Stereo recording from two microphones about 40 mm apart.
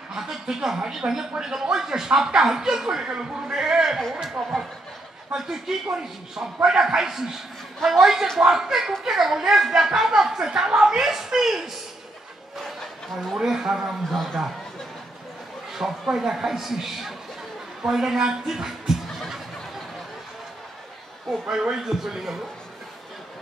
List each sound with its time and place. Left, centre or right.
0.1 s a woman's voice: centre
3.3 s a man's voice: right
3.5 s speech: centre
13.2 s speech: centre
14.0 s speech: centre
15.7 s speech: centre
21.3 s speech: centre